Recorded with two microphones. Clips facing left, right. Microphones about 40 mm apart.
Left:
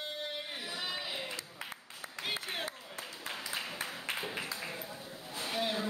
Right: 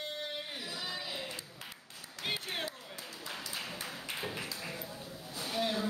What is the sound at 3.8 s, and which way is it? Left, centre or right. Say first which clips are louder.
Music: left 2 dB; left.